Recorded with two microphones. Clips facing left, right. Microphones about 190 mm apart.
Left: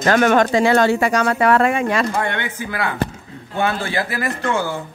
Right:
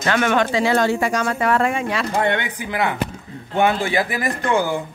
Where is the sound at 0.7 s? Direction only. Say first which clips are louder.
Left 3 dB; 70° left (ahead or behind).